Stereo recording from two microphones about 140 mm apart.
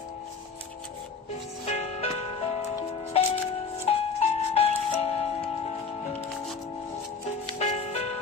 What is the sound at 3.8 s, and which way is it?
Music, 45° left (ahead or behind).